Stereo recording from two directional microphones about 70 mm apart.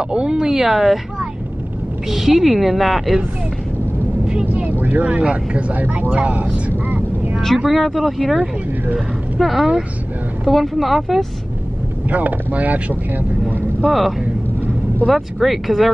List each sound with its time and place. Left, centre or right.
0.1 s speech: centre
2.0 s a woman's voice: centre
4.5 s speech: right
7.4 s a woman's voice: centre
8.4 s speech: centre
9.4 s a woman's voice: centre
12.1 s speech: right
13.8 s a woman's voice: centre